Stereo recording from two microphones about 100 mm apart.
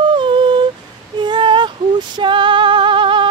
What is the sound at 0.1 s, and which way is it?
Humming, 55° right (ahead or behind).